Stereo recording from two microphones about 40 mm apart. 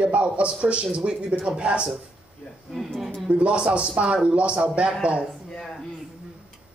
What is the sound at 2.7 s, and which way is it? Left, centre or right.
Speech, centre.